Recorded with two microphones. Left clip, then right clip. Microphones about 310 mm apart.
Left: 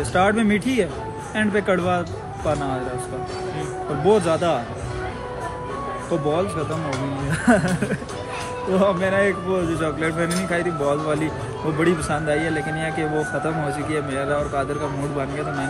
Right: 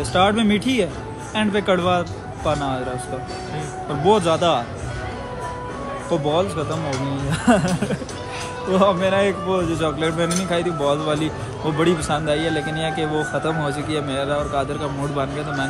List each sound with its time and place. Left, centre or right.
0.1 s a man's voice: centre
4.0 s a man's voice: centre
7.2 s a man's voice: centre
8.7 s a man's voice: centre